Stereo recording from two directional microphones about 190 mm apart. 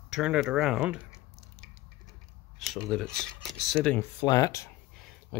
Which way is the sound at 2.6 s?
Centre (ahead or behind).